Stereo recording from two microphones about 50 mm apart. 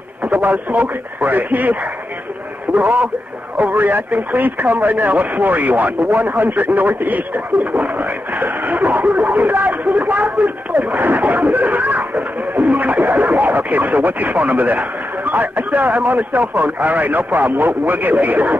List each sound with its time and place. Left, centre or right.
0.2 s a man's voice: right